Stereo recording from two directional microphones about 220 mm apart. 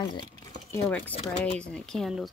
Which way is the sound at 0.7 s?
10° left (ahead or behind).